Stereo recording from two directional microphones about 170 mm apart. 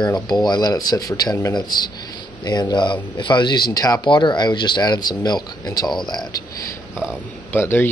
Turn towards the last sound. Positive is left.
turn(degrees=15)  # may be behind; listen again after turning